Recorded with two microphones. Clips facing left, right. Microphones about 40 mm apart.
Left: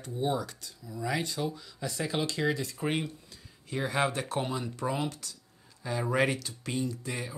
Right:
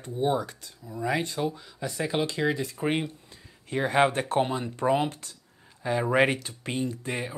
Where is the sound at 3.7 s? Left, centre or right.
Right.